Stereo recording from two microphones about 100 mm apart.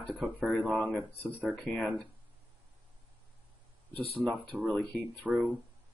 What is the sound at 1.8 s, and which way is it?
Speech, 10° right (ahead or behind).